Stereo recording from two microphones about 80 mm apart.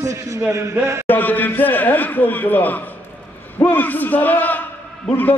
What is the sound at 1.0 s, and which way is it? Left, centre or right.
A man's voice, left.